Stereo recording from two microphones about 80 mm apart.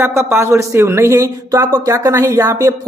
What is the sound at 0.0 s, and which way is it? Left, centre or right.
A man's voice, right.